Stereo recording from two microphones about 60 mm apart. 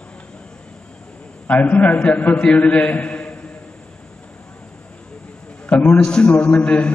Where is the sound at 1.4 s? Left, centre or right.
Left.